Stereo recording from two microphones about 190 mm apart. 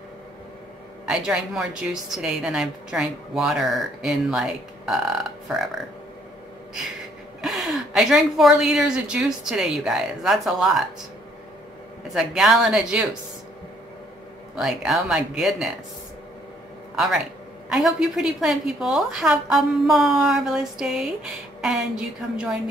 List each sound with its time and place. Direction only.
1.0 s a woman's voice: 5° right (ahead or behind)
7.4 s a woman's voice: centre (ahead or behind)
12.1 s a woman's voice: centre (ahead or behind)
14.5 s a woman's voice: centre (ahead or behind)
17.6 s a woman's voice: centre (ahead or behind)